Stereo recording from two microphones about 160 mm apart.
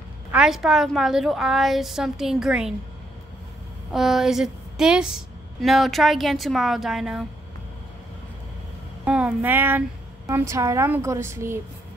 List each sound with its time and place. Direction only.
0.3 s a woman's voice: 5° right (ahead or behind)
3.9 s a woman's voice: centre (ahead or behind)
9.0 s a woman's voice: 10° right (ahead or behind)